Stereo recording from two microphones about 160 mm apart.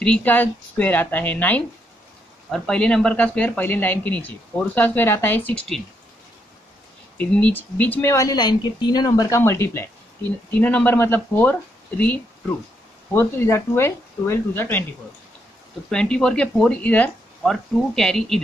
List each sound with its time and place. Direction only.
0.0 s speech: 10° left (ahead or behind)
7.2 s speech: 10° left (ahead or behind)
15.9 s speech: 5° left (ahead or behind)